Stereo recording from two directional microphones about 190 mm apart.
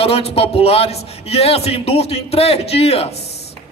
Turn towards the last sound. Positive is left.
turn(degrees=30)  # may be behind; listen again after turning